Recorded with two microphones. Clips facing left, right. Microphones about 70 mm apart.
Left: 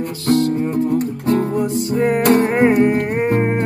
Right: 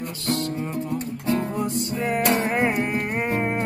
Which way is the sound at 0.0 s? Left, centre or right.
Left.